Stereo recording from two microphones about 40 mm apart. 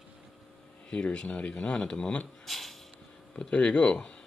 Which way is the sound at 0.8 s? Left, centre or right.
Left.